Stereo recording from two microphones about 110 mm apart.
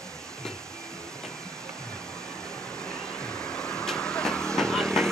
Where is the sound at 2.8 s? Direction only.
5° left (ahead or behind).